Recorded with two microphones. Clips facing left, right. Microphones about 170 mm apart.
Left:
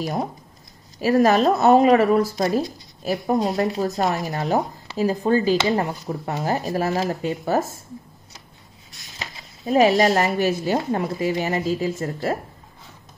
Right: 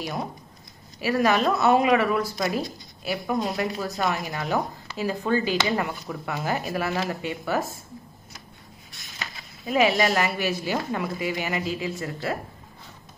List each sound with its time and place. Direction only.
1.0 s speech: 40° left (ahead or behind)
9.2 s speech: 40° left (ahead or behind)